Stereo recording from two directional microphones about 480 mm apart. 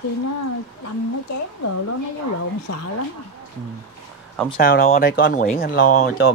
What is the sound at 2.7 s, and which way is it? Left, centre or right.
Speech, left.